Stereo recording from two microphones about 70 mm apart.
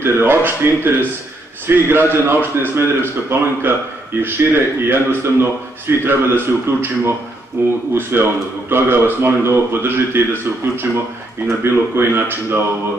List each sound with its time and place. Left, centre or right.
0.0 s a man's voice: right
11.4 s a man's voice: right